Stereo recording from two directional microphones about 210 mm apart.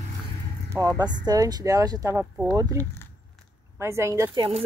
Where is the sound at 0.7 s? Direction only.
15° right (ahead or behind).